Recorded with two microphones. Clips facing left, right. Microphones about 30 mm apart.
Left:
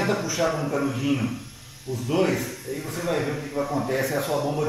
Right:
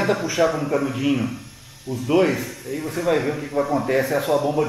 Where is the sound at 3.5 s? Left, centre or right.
Right.